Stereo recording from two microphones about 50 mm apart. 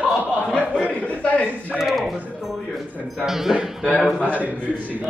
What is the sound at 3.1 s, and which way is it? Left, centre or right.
Speech, centre.